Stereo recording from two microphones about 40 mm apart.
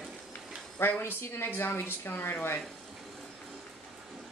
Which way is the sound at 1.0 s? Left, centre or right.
Left.